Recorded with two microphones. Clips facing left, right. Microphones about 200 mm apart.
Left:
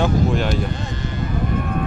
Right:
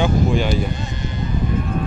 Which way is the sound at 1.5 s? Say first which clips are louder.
Even; 55° left (ahead or behind).